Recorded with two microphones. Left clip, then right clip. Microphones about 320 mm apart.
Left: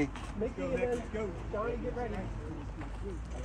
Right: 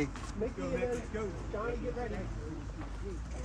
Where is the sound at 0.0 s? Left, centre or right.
Left.